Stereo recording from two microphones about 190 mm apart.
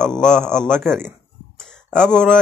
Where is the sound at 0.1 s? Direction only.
5° left (ahead or behind).